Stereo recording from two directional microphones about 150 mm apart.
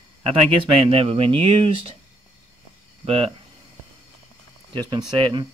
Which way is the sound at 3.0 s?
40° right (ahead or behind).